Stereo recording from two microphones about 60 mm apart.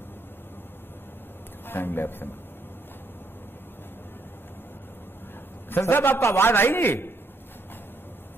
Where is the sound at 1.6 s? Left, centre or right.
Left.